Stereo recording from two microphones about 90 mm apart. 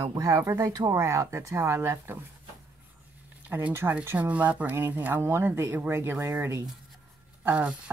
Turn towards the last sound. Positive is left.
turn(degrees=-15)  # may be behind; listen again after turning